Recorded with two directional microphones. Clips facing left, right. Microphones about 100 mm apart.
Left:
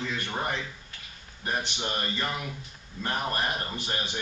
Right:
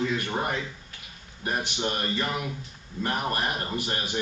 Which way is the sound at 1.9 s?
10° right (ahead or behind).